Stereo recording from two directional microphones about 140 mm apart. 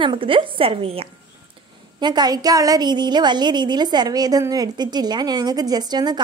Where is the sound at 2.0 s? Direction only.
30° right (ahead or behind).